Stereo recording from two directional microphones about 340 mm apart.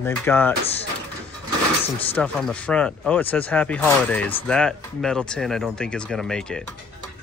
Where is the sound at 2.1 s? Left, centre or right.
Centre.